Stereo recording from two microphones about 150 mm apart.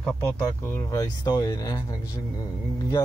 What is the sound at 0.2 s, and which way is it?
Speech, 15° left (ahead or behind).